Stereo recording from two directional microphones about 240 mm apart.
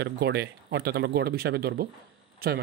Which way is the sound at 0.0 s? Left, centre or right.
Right.